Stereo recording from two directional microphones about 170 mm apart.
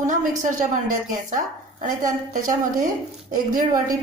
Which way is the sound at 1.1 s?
50° right (ahead or behind).